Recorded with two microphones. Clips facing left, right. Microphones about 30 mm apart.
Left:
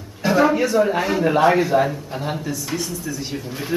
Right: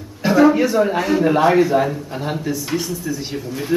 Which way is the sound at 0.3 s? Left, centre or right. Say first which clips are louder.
Right 3 dB; centre.